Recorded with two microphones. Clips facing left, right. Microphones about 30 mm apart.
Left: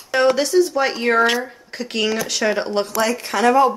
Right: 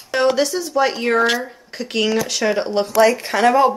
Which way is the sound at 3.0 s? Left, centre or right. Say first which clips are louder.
Right 4 dB; centre.